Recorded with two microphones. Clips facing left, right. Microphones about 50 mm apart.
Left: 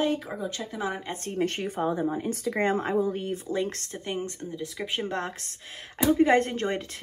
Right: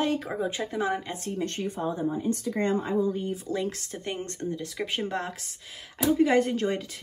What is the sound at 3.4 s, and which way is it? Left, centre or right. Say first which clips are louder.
Speech: left 1 dB; left.